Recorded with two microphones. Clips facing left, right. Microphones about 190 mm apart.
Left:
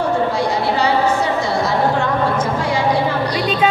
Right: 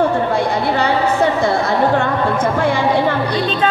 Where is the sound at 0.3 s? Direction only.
55° right (ahead or behind).